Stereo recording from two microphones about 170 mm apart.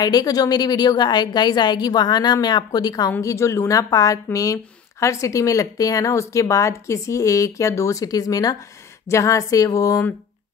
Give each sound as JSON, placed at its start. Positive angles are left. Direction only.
{"t": 0.0, "sound": "a woman's voice", "side_deg": 20}